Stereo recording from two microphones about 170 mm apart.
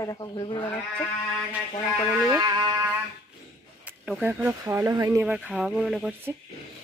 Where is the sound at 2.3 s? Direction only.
25° right (ahead or behind).